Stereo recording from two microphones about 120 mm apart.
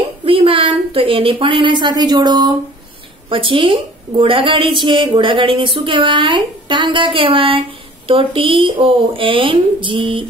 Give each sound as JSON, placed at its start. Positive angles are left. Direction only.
{"t": 0.2, "sound": "a woman's voice", "side_deg": -50}